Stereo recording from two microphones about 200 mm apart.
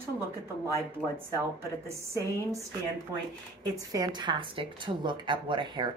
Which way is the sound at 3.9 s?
20° right (ahead or behind).